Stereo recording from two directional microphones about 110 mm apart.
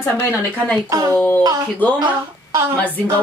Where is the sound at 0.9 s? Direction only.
30° right (ahead or behind).